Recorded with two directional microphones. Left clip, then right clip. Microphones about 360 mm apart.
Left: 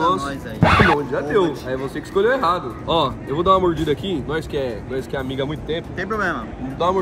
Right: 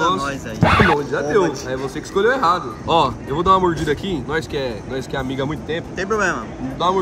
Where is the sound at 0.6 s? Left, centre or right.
Centre.